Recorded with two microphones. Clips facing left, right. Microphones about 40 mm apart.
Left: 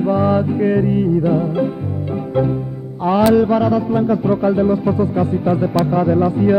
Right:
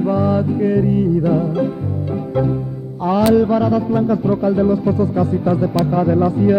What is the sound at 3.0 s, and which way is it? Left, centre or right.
Speech, left.